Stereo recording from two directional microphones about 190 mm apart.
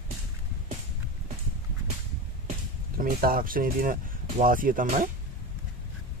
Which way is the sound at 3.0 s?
50° right (ahead or behind).